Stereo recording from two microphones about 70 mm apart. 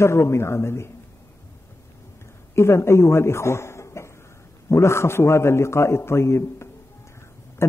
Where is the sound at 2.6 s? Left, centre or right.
Left.